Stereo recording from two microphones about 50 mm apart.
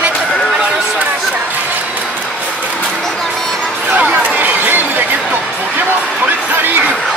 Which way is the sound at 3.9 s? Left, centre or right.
Right.